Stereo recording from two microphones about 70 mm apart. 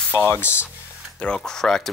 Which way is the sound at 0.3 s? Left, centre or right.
Left.